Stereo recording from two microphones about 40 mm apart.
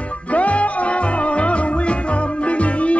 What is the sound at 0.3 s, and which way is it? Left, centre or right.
Music, left.